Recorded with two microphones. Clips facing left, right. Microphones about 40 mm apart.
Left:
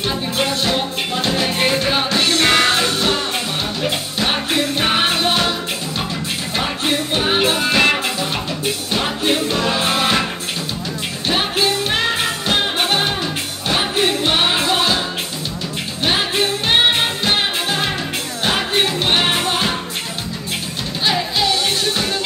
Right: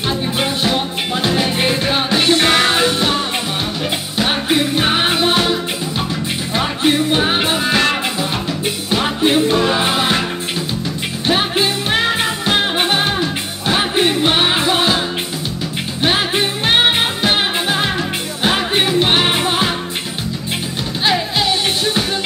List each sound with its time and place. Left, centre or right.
0.4 s music: centre
4.2 s music: centre
6.5 s music: centre
8.9 s music: centre
11.2 s music: centre
16.0 s music: centre